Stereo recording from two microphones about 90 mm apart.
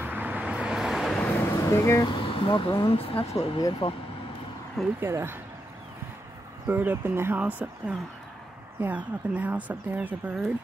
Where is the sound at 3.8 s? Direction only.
80° left.